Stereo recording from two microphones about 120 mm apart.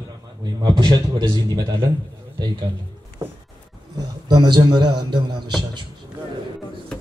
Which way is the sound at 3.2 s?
25° right (ahead or behind).